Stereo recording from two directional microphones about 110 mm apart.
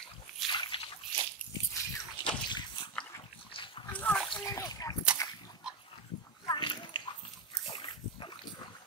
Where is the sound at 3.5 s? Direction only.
50° left (ahead or behind).